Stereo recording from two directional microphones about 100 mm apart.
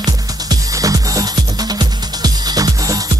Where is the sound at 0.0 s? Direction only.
40° right (ahead or behind).